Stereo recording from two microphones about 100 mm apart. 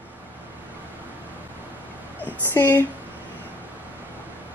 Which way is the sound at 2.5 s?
20° left (ahead or behind).